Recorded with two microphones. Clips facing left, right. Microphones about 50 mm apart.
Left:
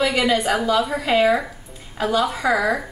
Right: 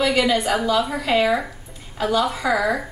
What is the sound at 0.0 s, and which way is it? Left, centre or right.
A woman's voice, centre.